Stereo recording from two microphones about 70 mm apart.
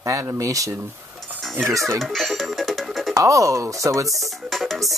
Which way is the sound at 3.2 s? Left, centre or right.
Right.